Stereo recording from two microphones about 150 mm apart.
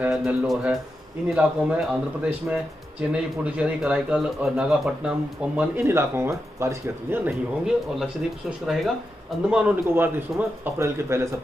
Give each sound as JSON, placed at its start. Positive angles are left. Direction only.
{"t": 0.0, "sound": "a man's voice", "side_deg": -5}
{"t": 7.6, "sound": "a man's voice", "side_deg": -5}